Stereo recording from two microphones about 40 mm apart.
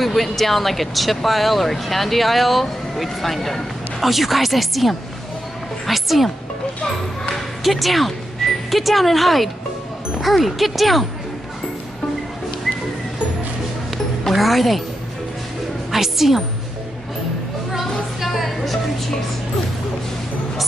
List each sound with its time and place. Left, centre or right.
0.0 s speech: centre
7.6 s speech: centre
14.3 s speech: centre
15.9 s a woman's voice: centre
18.2 s music: centre